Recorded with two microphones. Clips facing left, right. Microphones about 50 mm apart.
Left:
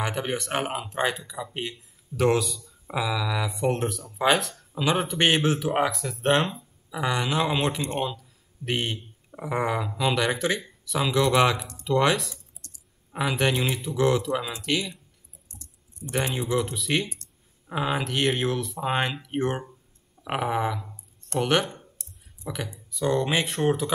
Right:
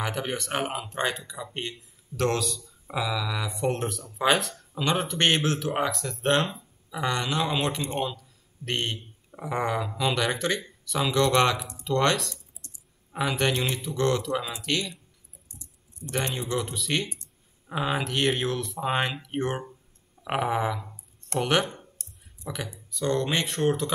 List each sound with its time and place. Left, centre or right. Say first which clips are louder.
0.0 s speech: left 2 dB; centre
12.6 s clicking: even; right
13.1 s speech: left 1 dB; centre
16.1 s speech: left 3 dB; centre
20.2 s a sound: even; centre
21.4 s speech: left 1 dB; centre